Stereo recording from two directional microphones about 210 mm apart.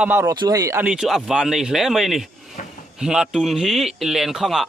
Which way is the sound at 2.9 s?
5° right (ahead or behind).